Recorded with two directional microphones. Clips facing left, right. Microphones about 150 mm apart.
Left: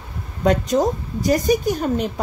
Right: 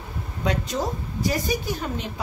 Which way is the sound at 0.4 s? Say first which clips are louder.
Left 9 dB; 45° left (ahead or behind).